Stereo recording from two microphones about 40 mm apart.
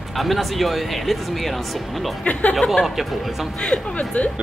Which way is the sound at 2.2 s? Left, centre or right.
Left.